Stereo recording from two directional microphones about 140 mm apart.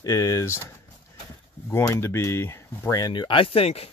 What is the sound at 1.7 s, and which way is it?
Speech, 20° left (ahead or behind).